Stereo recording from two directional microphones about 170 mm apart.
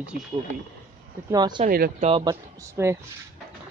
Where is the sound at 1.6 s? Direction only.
60° right (ahead or behind).